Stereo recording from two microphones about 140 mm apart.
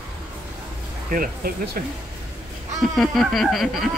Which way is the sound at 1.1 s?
90° right.